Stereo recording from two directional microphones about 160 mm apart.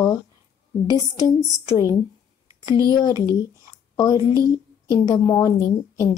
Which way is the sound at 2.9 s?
25° left (ahead or behind).